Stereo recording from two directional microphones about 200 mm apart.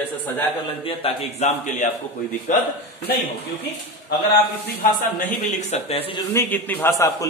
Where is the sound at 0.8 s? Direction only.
30° left (ahead or behind).